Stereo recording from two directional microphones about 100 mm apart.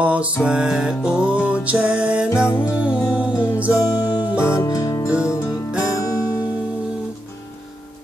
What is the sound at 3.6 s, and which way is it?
Music, 15° right (ahead or behind).